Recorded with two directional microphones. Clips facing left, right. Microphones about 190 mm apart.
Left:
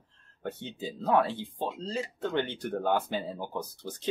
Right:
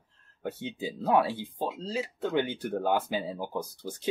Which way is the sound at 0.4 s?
10° right (ahead or behind).